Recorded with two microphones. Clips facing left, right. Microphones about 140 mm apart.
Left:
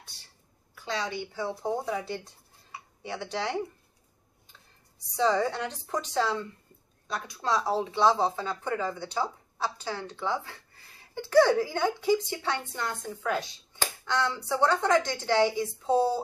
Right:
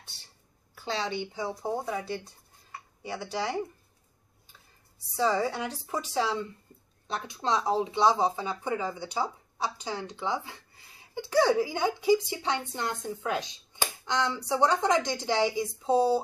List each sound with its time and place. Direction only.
0.8 s a woman's voice: 30° right (ahead or behind)
1.6 s speech: 5° right (ahead or behind)
5.1 s speech: 5° right (ahead or behind)
7.1 s speech: 25° right (ahead or behind)